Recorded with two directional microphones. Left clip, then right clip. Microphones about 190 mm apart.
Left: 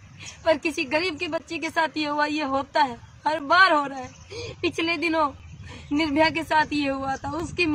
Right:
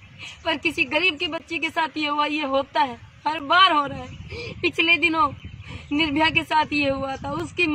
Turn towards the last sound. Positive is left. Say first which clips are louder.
# right 2 dB
turn(degrees=0)  # may be behind; listen again after turning